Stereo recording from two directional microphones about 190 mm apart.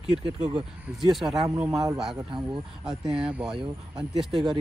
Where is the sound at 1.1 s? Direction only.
Centre (ahead or behind).